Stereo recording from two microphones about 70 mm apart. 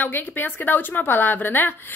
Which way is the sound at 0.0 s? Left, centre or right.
Left.